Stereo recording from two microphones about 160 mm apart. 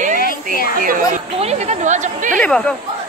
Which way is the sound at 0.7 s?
60° right (ahead or behind).